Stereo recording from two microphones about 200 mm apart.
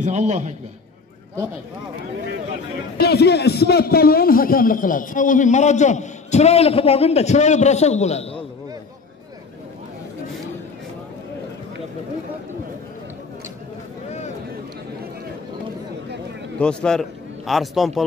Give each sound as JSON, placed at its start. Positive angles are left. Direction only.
{"t": 0.0, "sound": "a man's voice", "side_deg": -35}
{"t": 3.0, "sound": "a man's voice", "side_deg": 55}
{"t": 16.5, "sound": "a man's voice", "side_deg": 5}